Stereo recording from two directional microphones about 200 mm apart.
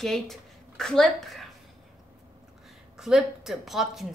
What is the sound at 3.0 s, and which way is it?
Speech, centre (ahead or behind).